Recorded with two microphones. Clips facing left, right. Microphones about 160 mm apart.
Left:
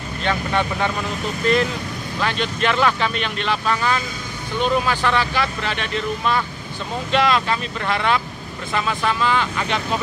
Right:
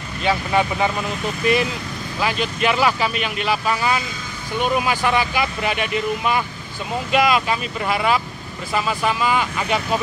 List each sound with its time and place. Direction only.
0.2 s speech: 5° right (ahead or behind)